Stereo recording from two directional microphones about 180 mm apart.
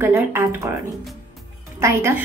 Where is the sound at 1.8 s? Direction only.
15° right (ahead or behind).